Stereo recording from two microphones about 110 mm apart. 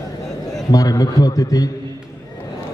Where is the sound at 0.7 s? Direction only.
35° left (ahead or behind).